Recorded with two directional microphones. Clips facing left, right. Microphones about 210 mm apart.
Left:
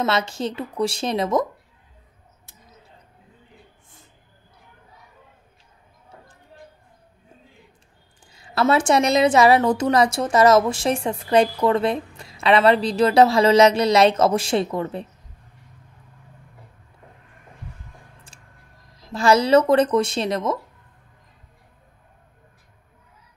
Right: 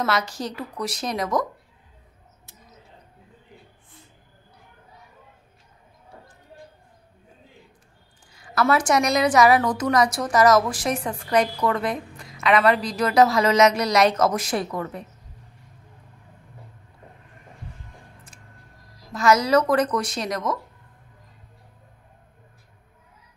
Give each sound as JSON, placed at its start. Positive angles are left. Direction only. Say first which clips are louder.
{"t": 0.0, "sound": "a woman's voice", "louder": "left 3 dB", "side_deg": 25}
{"t": 8.3, "sound": "a woman's voice", "louder": "left 2 dB", "side_deg": 25}
{"t": 18.3, "sound": "a sound", "louder": "right 2 dB", "side_deg": 30}
{"t": 18.9, "sound": "a woman's voice", "louder": "left 2 dB", "side_deg": 25}